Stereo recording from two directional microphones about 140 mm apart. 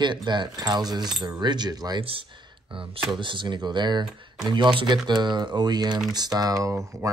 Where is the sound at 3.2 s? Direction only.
35° right (ahead or behind).